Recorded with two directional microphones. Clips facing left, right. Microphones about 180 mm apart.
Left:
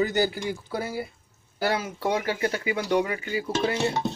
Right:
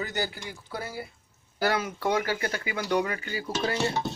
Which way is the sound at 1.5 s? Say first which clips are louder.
Even; 25° left (ahead or behind).